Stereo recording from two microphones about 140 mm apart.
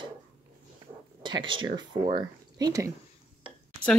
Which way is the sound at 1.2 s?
35° right (ahead or behind).